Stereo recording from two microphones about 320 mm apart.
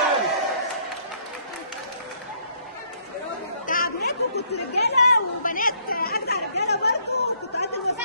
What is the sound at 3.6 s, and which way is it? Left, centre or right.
Chatter, left.